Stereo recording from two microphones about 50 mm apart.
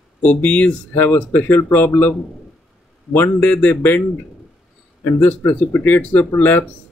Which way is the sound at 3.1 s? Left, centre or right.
Left.